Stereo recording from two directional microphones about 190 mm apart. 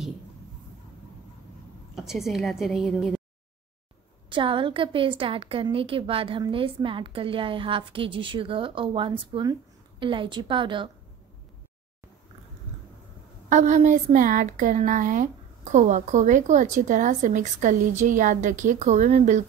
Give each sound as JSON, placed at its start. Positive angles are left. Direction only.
{"t": 2.0, "sound": "a woman's voice", "side_deg": 0}
{"t": 4.3, "sound": "a woman's voice", "side_deg": -25}
{"t": 13.5, "sound": "a woman's voice", "side_deg": -40}